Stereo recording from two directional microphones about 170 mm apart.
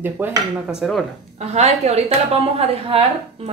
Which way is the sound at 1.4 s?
40° right (ahead or behind).